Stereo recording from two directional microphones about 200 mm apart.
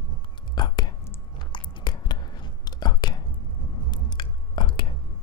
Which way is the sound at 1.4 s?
25° left (ahead or behind).